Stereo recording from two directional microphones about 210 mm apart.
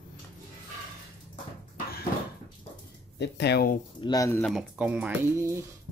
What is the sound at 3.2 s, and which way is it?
Speech, 55° left (ahead or behind).